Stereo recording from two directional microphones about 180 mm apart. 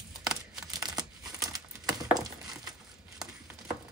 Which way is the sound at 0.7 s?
20° right (ahead or behind).